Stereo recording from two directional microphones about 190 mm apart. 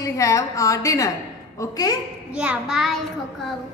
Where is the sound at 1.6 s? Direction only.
20° left (ahead or behind).